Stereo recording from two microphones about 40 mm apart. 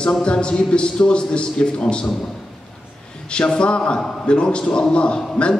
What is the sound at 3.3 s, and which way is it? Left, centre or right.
A man's voice, left.